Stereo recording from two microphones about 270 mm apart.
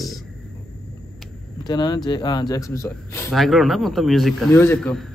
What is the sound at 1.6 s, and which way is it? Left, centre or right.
Speech, centre.